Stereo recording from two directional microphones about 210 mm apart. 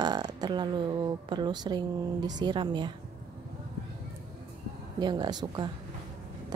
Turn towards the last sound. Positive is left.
turn(degrees=-20)  # may be behind; listen again after turning